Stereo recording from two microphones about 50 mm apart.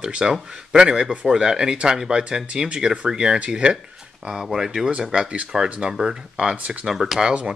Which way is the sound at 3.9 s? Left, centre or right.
Centre.